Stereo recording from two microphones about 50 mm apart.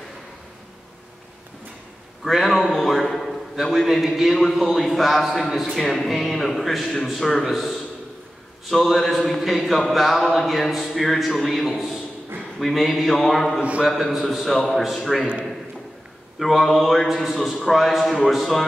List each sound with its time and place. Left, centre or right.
2.2 s a man's voice: centre
5.9 s a man's voice: centre
13.1 s mantra: centre
13.6 s a man's voice: right
13.8 s a man's voice: centre
16.3 s a man's voice: centre